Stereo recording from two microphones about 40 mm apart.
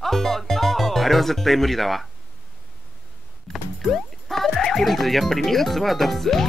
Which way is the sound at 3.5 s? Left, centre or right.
Centre.